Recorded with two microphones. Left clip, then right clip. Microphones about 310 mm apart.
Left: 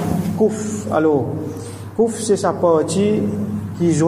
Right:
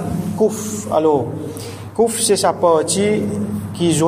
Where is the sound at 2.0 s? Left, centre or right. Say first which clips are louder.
Right 2 dB; right.